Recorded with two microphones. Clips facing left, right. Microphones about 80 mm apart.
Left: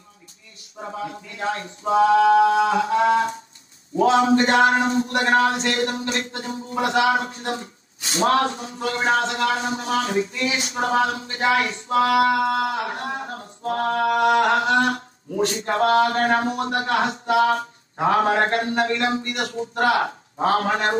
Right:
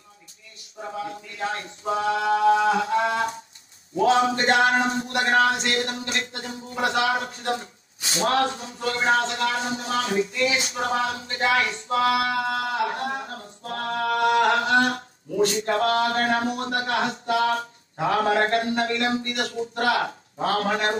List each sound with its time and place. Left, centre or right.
1.0 s speech: left
4.0 s a man's voice: left
11.9 s a sound: left
13.7 s a man's voice: left